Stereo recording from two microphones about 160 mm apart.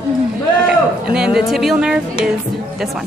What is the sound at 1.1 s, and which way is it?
A woman's voice, 5° right (ahead or behind).